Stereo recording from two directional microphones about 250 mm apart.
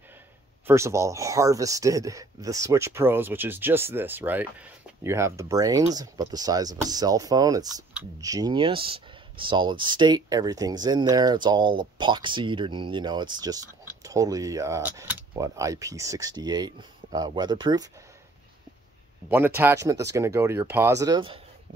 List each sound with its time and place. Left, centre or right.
0.7 s speech: centre
19.2 s speech: centre